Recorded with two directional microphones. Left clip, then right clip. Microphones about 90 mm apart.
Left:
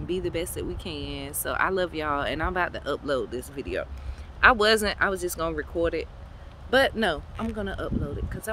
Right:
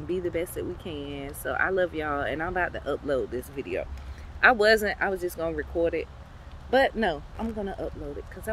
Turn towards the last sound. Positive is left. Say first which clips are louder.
# left 1 dB
turn(degrees=30)  # may be behind; listen again after turning